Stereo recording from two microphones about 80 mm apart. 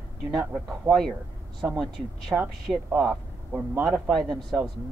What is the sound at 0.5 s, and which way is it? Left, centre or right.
Speech, right.